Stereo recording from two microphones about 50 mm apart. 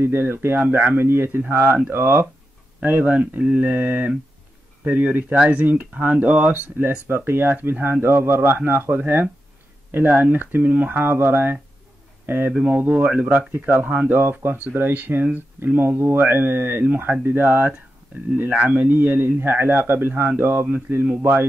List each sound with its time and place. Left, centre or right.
0.0 s speech: right
0.7 s speech: right
2.8 s speech: right
7.1 s speech: right
7.5 s speech: right
8.1 s speech: right
8.5 s speech: right
12.5 s speech: right
13.6 s speech: right